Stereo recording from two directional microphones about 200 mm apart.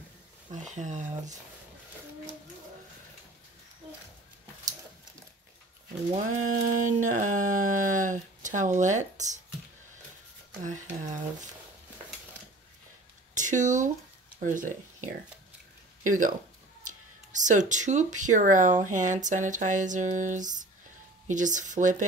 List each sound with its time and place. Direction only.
0.5 s speech: 35° right (ahead or behind)
6.1 s speech: 40° right (ahead or behind)
10.6 s speech: 40° right (ahead or behind)
13.3 s speech: 40° right (ahead or behind)
16.1 s speech: 40° right (ahead or behind)